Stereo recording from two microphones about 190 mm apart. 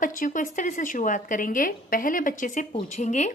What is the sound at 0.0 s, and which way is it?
A woman's voice, 45° left (ahead or behind).